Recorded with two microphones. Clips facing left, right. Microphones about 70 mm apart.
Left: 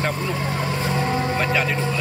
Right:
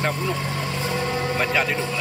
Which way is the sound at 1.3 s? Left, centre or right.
Centre.